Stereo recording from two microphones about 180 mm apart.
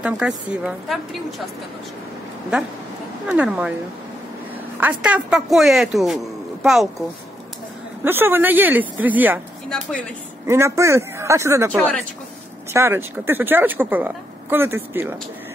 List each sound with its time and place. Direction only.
0.0 s speech: 5° right (ahead or behind)
3.3 s speech: 5° right (ahead or behind)
4.7 s speech: 10° right (ahead or behind)
8.0 s a woman's voice: 10° right (ahead or behind)
10.4 s a woman's voice: 15° right (ahead or behind)
11.7 s speech: 5° left (ahead or behind)
12.7 s a woman's voice: 15° right (ahead or behind)